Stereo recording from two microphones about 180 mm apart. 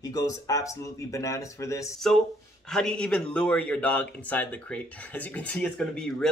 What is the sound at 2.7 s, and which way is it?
A man's voice, 5° left (ahead or behind).